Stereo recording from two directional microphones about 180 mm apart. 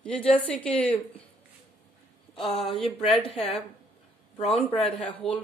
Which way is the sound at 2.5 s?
Centre (ahead or behind).